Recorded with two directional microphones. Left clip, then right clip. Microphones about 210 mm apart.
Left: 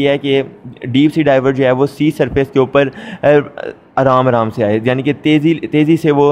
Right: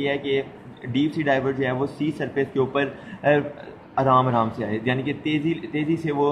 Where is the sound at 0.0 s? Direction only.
50° left (ahead or behind).